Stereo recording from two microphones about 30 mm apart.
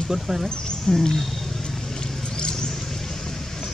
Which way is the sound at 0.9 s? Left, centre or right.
Left.